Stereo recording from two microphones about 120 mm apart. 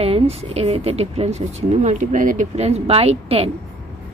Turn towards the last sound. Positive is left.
turn(degrees=-55)  # may be behind; listen again after turning